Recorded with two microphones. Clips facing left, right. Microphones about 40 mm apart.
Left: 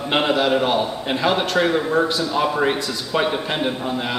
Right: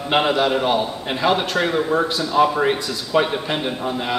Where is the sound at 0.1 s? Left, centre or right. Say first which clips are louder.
Even; centre.